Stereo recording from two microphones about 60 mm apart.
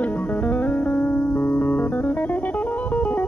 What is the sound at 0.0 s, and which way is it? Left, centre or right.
Music, left.